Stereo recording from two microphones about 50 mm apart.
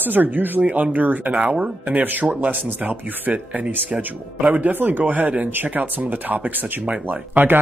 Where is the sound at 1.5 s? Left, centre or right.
Centre.